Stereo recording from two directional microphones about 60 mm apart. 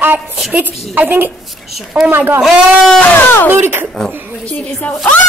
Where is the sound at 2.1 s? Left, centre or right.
Right.